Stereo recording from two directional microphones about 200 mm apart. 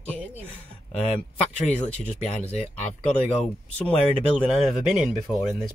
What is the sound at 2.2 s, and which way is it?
Speech, 35° left (ahead or behind).